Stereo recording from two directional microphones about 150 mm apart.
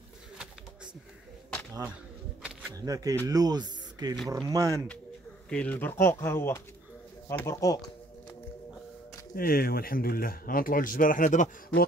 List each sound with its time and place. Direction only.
2.7 s speech: 25° right (ahead or behind)
5.5 s speech: 10° left (ahead or behind)
9.3 s speech: 80° left; by 11.8 s 60° left (ahead or behind)